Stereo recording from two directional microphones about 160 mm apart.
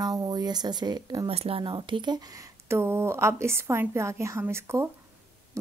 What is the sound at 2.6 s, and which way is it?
A woman's voice, 15° right (ahead or behind).